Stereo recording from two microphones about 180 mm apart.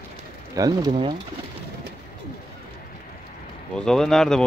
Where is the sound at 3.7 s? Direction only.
5° left (ahead or behind).